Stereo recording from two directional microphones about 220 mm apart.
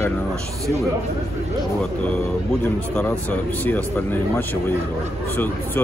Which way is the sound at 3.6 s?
10° left (ahead or behind).